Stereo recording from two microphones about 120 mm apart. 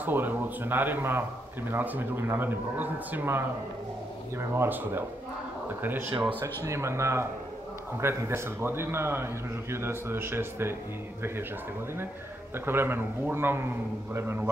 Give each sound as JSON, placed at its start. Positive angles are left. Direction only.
{"t": 0.0, "sound": "a man's voice", "side_deg": -15}
{"t": 12.5, "sound": "a man's voice", "side_deg": -20}